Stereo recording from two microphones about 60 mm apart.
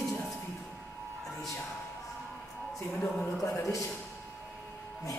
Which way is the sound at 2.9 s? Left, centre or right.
Centre.